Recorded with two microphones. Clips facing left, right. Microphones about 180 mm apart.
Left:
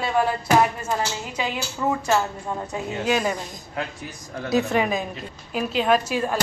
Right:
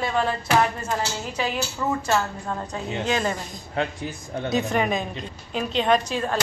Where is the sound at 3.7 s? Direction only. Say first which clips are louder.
Right 5 dB; 25° right (ahead or behind).